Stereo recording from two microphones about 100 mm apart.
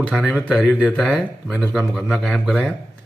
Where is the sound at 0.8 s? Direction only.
5° left (ahead or behind).